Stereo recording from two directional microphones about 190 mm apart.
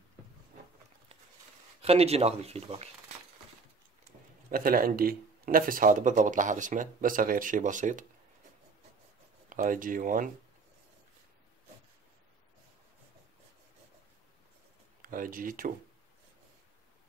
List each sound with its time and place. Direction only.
1.8 s speech: 30° right (ahead or behind)
4.5 s speech: 50° right (ahead or behind)
9.5 s speech: 45° right (ahead or behind)
15.0 s speech: 45° right (ahead or behind)